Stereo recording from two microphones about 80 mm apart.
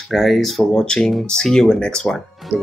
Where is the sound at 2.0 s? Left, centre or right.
Centre.